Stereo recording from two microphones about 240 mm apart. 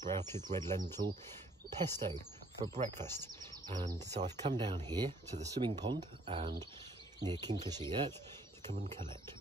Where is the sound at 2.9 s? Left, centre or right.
Centre.